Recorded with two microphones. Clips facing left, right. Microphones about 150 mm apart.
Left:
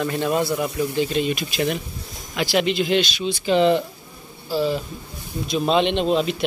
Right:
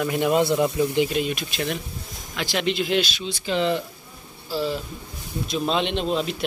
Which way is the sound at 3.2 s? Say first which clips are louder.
Left 6 dB; 20° left (ahead or behind).